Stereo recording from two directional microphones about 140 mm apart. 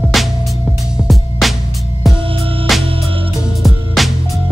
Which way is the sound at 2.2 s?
40° right (ahead or behind).